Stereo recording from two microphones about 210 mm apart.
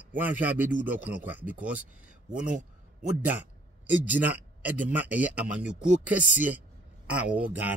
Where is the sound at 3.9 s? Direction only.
10° right (ahead or behind).